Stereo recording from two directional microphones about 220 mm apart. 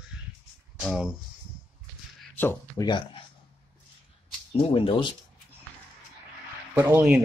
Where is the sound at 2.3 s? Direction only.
10° left (ahead or behind).